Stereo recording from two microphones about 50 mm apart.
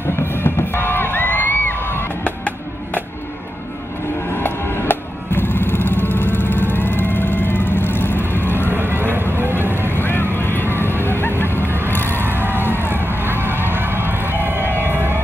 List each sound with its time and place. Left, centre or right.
0.3 s music: left
2.2 s music: left
4.4 s music: left
8.7 s vehicle: right
9.8 s vehicle: left
11.9 s music: left
12.4 s a sound: left
13.7 s a sound: right